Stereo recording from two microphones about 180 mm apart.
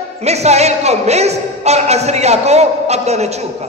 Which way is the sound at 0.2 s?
35° right (ahead or behind).